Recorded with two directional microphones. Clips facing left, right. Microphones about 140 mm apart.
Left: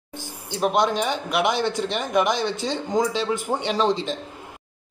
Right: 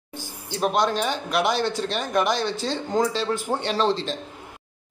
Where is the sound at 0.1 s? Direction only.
20° left (ahead or behind).